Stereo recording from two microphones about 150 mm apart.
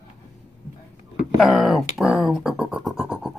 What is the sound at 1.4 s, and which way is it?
Scratch, centre (ahead or behind).